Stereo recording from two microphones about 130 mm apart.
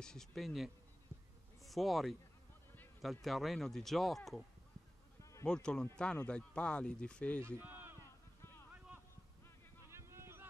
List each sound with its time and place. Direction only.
0.0 s speech: 5° left (ahead or behind)
7.4 s a man's voice: 15° right (ahead or behind)
9.8 s a sound: 20° right (ahead or behind)